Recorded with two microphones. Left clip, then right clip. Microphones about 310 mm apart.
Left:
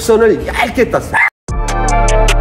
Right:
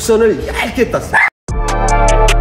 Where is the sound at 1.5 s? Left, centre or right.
Centre.